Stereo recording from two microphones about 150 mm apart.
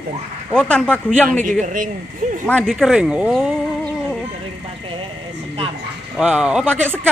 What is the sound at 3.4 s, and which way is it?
Music, 5° left (ahead or behind).